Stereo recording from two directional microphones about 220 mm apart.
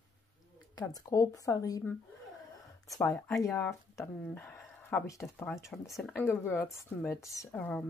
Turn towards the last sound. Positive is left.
turn(degrees=10)  # may be behind; listen again after turning